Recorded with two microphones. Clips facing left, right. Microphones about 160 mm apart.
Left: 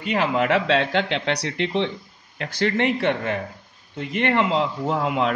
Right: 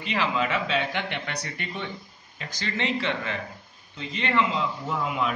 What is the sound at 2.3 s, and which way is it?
Speech, 65° left (ahead or behind).